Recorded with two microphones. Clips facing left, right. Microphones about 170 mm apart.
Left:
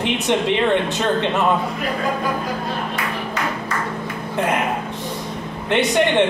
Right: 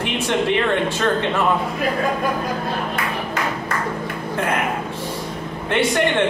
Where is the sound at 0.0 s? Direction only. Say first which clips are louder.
Left 1 dB; 20° left (ahead or behind).